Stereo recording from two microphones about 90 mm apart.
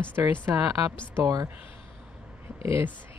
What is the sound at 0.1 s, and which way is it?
Speech, 25° right (ahead or behind).